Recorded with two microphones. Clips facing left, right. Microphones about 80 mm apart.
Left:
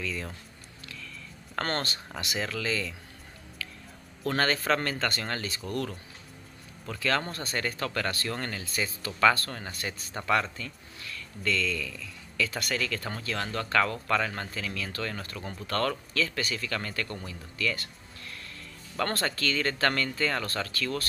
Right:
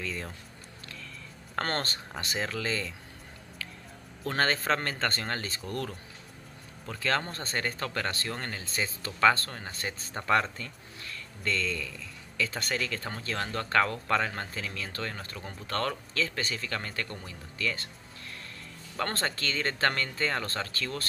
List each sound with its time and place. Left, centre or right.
0.0 s speech: right
0.8 s a sound: right
1.5 s speech: right
3.6 s a sound: right
4.3 s speech: right
18.9 s speech: right